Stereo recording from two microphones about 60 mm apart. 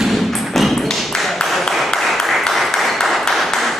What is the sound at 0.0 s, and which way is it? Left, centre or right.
Tap, centre.